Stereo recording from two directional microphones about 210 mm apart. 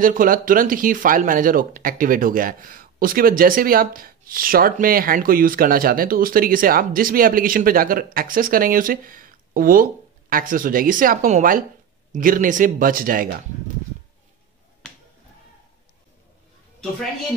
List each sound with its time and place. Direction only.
0.0 s a woman's voice: 40° right (ahead or behind)